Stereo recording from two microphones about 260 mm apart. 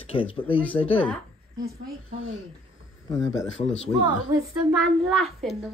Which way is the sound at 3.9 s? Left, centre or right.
Centre.